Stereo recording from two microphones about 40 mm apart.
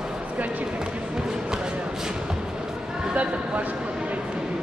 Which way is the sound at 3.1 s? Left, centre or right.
Right.